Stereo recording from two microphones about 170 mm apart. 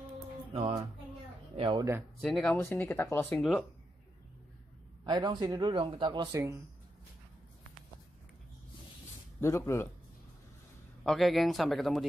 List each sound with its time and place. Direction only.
0.6 s speech: 20° right (ahead or behind)
2.2 s speech: 5° left (ahead or behind)
3.3 s speech: centre (ahead or behind)
5.0 s speech: 25° right (ahead or behind)
9.4 s speech: 15° left (ahead or behind)
11.1 s speech: centre (ahead or behind)